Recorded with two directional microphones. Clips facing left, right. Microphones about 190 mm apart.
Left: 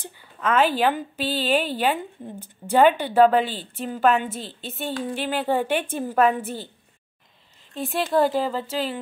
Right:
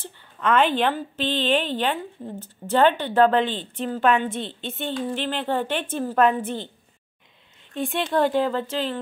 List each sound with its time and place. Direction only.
0.0 s a woman's voice: 5° left (ahead or behind)
7.7 s speech: centre (ahead or behind)